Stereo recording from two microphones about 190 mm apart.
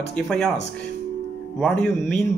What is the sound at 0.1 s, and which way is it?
Speech, 5° left (ahead or behind).